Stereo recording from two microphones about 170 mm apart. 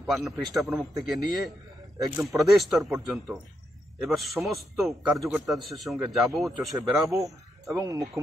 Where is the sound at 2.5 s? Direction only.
Centre (ahead or behind).